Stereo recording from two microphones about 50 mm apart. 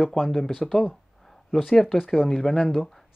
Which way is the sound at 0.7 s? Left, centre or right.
Centre.